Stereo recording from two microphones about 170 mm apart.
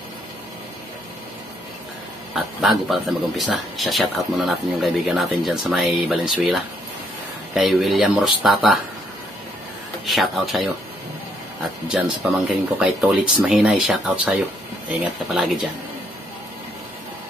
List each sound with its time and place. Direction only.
2.3 s speech: centre (ahead or behind)
10.0 s speech: centre (ahead or behind)
11.9 s speech: 5° right (ahead or behind)